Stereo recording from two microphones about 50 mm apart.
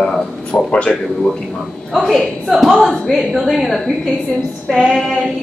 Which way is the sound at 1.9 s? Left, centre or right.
Centre.